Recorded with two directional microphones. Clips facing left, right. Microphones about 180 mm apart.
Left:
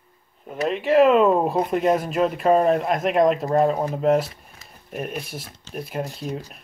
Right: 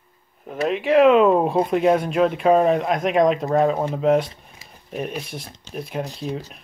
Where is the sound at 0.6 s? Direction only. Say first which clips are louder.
Right 1 dB; centre (ahead or behind).